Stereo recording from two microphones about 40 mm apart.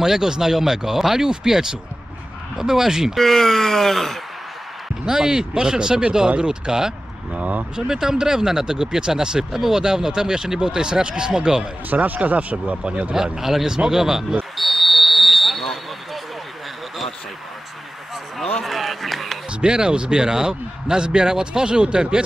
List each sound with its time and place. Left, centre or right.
0.0 s speech: centre
3.2 s speech: centre
5.0 s a man's voice: centre
7.3 s speech: right
7.7 s speech: centre
11.9 s speech: right
13.1 s speech: centre
14.6 s vehicle: centre
18.6 s a sound: centre
19.6 s a man's voice: right